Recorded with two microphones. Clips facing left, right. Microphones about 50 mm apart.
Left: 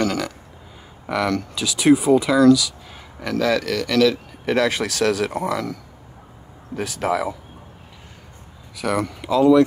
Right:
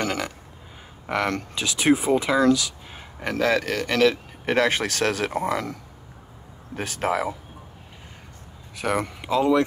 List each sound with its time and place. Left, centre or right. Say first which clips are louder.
0.0 s a sound: left 4 dB; right
1.0 s speech: left 3 dB; right
8.7 s speech: left 2 dB; right